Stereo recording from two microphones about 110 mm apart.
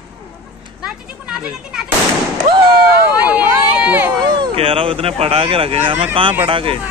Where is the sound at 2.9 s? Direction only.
15° right (ahead or behind).